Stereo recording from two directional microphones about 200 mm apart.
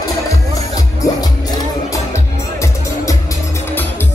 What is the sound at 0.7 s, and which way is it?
Music, 15° left (ahead or behind).